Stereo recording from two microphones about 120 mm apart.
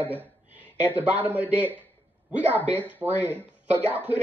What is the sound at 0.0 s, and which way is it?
A man's voice, 15° right (ahead or behind).